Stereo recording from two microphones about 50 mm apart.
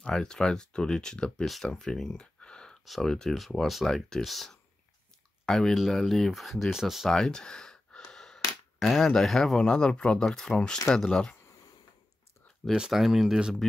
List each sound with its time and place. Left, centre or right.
0.0 s speech: centre
1.4 s speech: centre
2.8 s speech: centre
7.1 s gasp: centre
8.7 s speech: centre
9.7 s speech: centre
12.9 s speech: centre